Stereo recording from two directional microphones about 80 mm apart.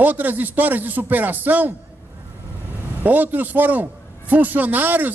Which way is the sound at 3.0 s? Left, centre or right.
Right.